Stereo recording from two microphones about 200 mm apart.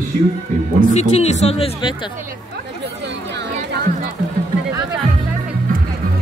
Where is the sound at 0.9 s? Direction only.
35° left (ahead or behind).